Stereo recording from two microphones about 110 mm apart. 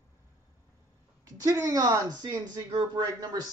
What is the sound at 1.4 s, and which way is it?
Speech, 30° right (ahead or behind).